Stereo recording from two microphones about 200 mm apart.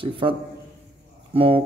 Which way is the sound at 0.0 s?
25° right (ahead or behind).